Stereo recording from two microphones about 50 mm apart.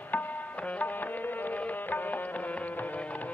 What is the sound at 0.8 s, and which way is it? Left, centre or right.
Music, left.